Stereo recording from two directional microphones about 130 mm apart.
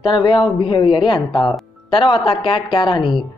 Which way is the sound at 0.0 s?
35° left (ahead or behind).